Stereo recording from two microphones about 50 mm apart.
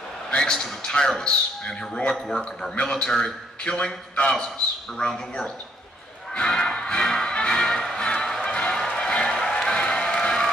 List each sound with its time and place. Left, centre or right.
0.3 s a man's voice: centre
2.2 s a man's voice: centre
2.8 s a man's voice: centre
6.3 s music: centre